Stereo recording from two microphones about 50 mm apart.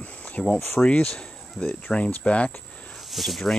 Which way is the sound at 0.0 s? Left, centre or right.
Left.